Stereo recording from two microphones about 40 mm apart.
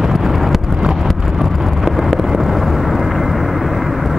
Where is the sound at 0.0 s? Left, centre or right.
Centre.